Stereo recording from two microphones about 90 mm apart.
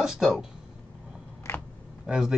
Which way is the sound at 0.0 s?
5° right (ahead or behind).